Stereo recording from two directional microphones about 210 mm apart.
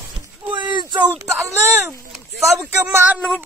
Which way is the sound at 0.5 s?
20° right (ahead or behind).